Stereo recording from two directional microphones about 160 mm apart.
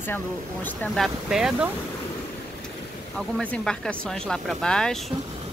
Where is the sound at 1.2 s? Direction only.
5° right (ahead or behind).